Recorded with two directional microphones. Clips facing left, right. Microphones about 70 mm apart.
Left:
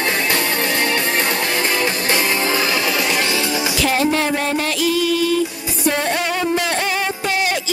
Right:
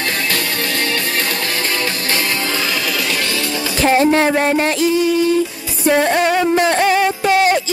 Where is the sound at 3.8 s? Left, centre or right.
Right.